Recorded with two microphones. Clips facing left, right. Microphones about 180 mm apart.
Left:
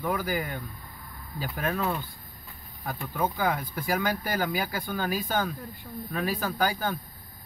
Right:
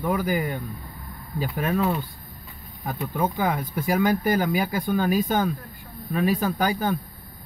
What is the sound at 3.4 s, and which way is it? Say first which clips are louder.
Speech: right 3 dB; 20° right (ahead or behind).